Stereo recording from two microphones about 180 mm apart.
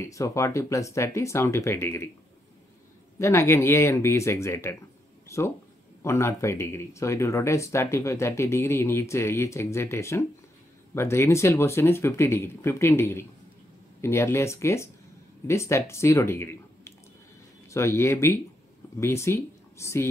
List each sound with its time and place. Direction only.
0.0 s speech: 15° left (ahead or behind)
3.2 s speech: 15° left (ahead or behind)
6.0 s speech: 15° left (ahead or behind)